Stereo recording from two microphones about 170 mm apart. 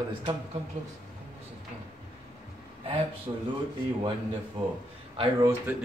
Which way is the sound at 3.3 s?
25° right (ahead or behind).